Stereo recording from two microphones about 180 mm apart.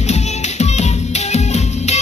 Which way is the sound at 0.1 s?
40° left (ahead or behind).